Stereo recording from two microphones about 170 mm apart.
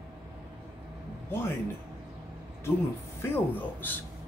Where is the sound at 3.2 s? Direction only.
10° left (ahead or behind).